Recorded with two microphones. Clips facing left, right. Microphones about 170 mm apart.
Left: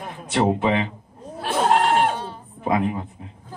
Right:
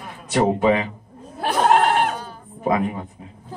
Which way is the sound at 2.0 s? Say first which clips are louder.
Left 2 dB; 30° left (ahead or behind).